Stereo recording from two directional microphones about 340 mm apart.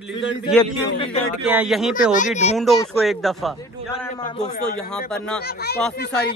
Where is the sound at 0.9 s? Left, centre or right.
Centre.